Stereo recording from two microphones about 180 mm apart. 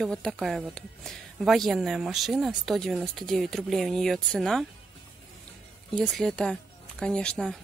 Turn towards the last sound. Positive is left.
turn(degrees=5)  # may be behind; listen again after turning